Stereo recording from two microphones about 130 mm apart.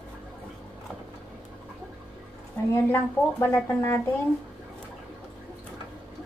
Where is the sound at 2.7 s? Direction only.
15° left (ahead or behind).